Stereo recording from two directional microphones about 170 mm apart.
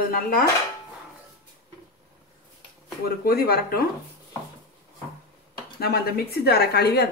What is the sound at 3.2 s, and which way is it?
Speech, 60° left (ahead or behind).